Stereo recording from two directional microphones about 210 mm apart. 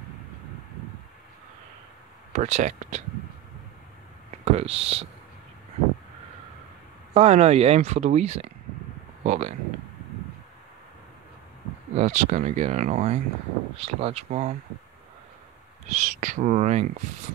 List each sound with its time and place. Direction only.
2.3 s speech: 35° right (ahead or behind)
4.5 s speech: 30° right (ahead or behind)
7.2 s speech: 30° right (ahead or behind)
11.9 s speech: 35° right (ahead or behind)
15.9 s speech: 35° right (ahead or behind)